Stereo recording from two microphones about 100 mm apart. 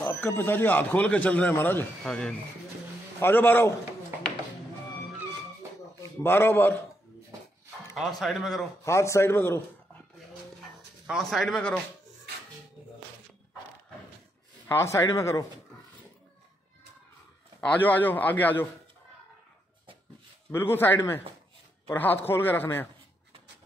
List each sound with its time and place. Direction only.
0.0 s a man's voice: 20° left (ahead or behind)
2.0 s a man's voice: 5° left (ahead or behind)
3.2 s a man's voice: 20° left (ahead or behind)
6.2 s a man's voice: 20° left (ahead or behind)
8.2 s a man's voice: centre (ahead or behind)
8.8 s a man's voice: 30° left (ahead or behind)
11.1 s a man's voice: centre (ahead or behind)
14.7 s a man's voice: 30° left (ahead or behind)
17.6 s a man's voice: 15° left (ahead or behind)
20.5 s a man's voice: 25° left (ahead or behind)